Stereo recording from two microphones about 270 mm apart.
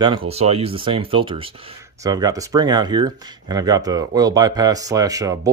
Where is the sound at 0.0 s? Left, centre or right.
Centre.